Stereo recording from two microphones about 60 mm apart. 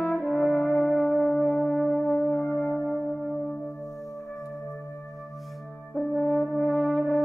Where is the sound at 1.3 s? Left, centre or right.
Centre.